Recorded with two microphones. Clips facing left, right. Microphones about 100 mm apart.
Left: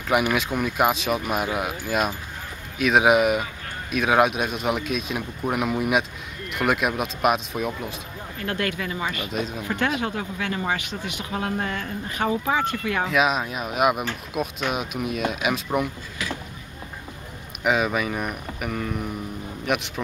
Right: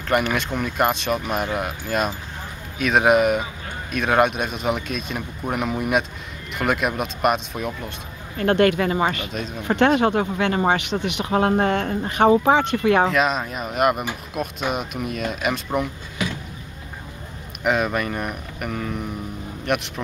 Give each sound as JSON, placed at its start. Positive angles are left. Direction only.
{"t": 0.1, "sound": "a man's voice", "side_deg": 5}
{"t": 8.4, "sound": "speech", "side_deg": -55}
{"t": 9.2, "sound": "a man's voice", "side_deg": 5}
{"t": 9.7, "sound": "speech", "side_deg": -55}
{"t": 10.8, "sound": "speech", "side_deg": -70}
{"t": 13.1, "sound": "a man's voice", "side_deg": 5}
{"t": 16.2, "sound": "a sound", "side_deg": -20}
{"t": 17.6, "sound": "a man's voice", "side_deg": 0}